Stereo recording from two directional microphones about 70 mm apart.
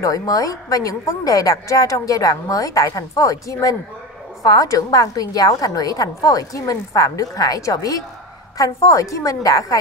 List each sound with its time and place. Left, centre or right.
0.0 s a woman's voice: left